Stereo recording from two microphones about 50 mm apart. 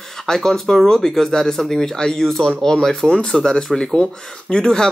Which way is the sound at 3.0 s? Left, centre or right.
Centre.